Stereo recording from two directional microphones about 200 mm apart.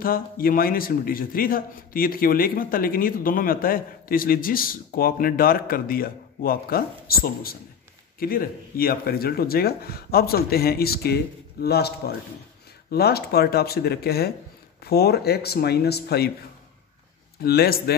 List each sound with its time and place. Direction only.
0.0 s a man's voice: 45° left (ahead or behind)
12.9 s a man's voice: 50° left (ahead or behind)
17.4 s a man's voice: 50° left (ahead or behind)